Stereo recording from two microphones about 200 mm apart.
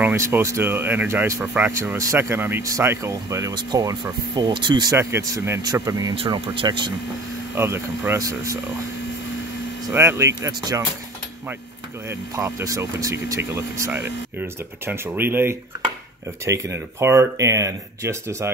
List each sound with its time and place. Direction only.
0.0 s speech: 10° right (ahead or behind)
7.5 s speech: 10° right (ahead or behind)
9.9 s speech: 15° right (ahead or behind)
12.1 s speech: 15° right (ahead or behind)